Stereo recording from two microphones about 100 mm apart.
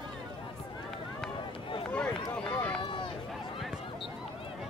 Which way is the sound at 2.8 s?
60° left (ahead or behind).